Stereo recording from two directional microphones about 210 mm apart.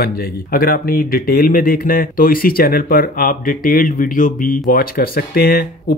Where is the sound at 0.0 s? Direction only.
45° left (ahead or behind).